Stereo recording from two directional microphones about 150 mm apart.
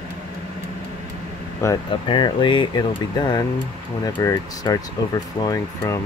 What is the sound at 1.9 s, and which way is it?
Speech, 35° left (ahead or behind).